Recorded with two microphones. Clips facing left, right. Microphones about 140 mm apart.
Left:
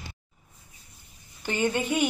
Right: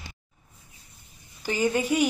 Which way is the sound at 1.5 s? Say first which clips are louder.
Right 2 dB; 5° right (ahead or behind).